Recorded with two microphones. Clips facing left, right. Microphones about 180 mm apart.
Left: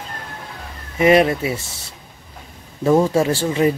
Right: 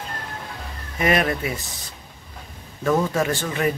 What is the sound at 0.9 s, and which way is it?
Speech, 25° left (ahead or behind).